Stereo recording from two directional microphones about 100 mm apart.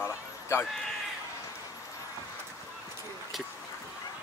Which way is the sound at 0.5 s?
25° left (ahead or behind).